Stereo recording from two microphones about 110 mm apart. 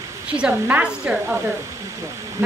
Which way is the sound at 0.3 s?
15° right (ahead or behind).